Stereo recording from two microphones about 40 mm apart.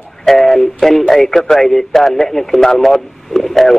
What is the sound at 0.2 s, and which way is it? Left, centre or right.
A man's voice, centre.